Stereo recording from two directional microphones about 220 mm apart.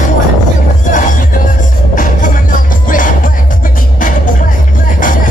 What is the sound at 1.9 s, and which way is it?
Music, 35° left (ahead or behind).